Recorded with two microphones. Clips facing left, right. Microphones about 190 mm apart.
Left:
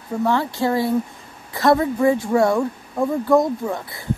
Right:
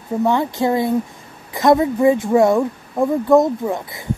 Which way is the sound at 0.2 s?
20° right (ahead or behind).